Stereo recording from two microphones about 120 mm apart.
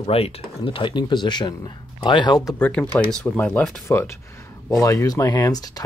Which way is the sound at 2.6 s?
10° left (ahead or behind).